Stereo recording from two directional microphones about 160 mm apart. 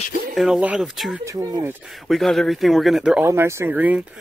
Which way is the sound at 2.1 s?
Centre (ahead or behind).